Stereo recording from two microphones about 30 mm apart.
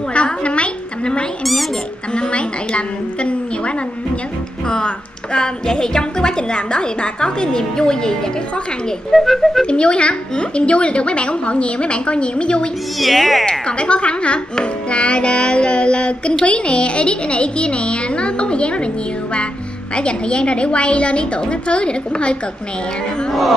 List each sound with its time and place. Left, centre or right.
0.1 s a woman's voice: left
1.4 s speech: centre
2.1 s a woman's voice: left
4.6 s a woman's voice: left
9.1 s speech: centre
9.7 s a woman's voice: left
13.0 s speech: centre
13.5 s a woman's voice: left
20.0 s a woman's voice: left